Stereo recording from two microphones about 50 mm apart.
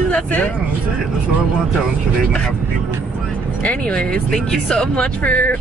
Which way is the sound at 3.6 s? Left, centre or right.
Left.